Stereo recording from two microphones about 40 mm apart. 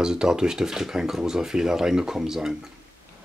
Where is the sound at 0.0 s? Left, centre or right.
Centre.